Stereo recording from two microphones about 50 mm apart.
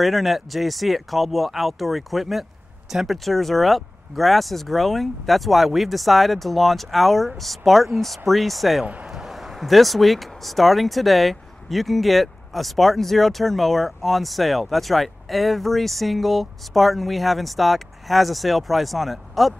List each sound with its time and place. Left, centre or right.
0.0 s speech: centre
8.8 s a man's voice: right
9.1 s speech: centre